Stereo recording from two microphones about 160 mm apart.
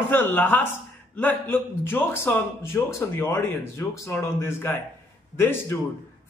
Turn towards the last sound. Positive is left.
turn(degrees=15)  # may be behind; listen again after turning